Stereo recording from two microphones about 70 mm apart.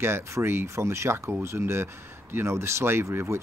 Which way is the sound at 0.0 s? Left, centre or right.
Right.